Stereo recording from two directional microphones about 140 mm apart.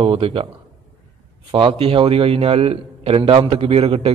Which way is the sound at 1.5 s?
40° right (ahead or behind).